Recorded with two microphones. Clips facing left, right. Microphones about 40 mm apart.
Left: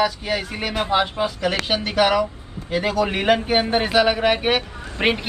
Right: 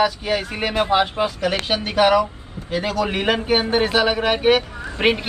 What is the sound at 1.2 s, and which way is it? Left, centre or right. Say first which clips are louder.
Speech: right 2 dB; centre.